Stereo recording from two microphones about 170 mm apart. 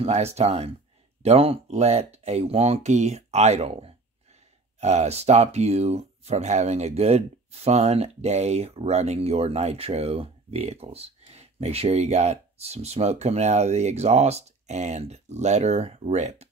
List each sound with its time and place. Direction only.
0.0 s speech: 40° right (ahead or behind)